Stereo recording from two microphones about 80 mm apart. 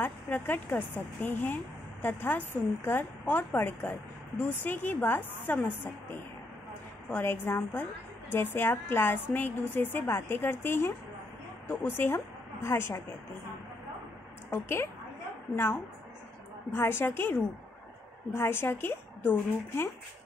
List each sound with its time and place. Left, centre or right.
0.0 s speech: left
7.1 s speech: left
14.5 s speech: left